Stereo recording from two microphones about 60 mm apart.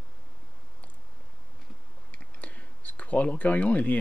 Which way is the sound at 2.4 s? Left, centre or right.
Left.